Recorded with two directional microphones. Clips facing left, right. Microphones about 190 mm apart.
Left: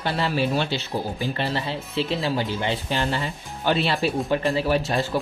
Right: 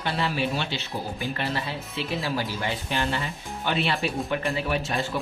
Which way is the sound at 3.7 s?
35° left (ahead or behind).